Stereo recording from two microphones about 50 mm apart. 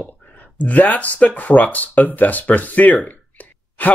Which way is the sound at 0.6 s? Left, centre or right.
Left.